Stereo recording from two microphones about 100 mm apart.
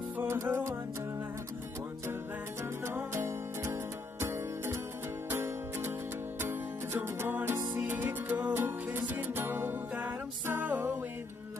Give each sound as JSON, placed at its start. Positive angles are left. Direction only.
{"t": 0.2, "sound": "music", "side_deg": -25}
{"t": 2.8, "sound": "music", "side_deg": -25}